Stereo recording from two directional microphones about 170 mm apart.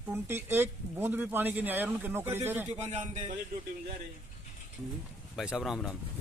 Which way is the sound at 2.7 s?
40° right (ahead or behind).